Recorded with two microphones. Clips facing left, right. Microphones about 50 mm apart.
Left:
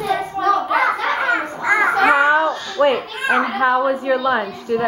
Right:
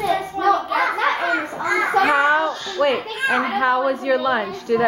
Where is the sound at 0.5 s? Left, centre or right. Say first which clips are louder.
Left 3 dB; centre.